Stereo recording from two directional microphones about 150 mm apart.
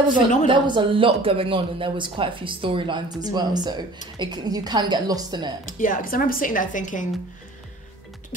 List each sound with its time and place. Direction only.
0.5 s a woman's voice: 35° right (ahead or behind)
5.7 s speech: 60° left (ahead or behind)